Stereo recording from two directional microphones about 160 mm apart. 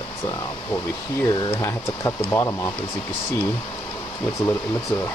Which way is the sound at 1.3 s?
30° left (ahead or behind).